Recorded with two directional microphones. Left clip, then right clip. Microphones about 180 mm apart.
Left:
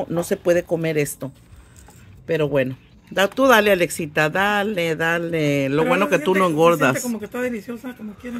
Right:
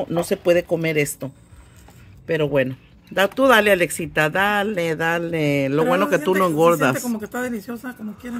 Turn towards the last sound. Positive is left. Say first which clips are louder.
# left 2 dB
turn(degrees=-60)  # may be behind; listen again after turning